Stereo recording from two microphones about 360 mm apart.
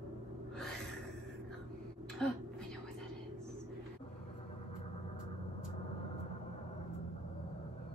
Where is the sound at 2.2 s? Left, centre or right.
Centre.